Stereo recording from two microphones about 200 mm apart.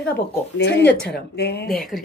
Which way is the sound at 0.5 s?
60° left (ahead or behind).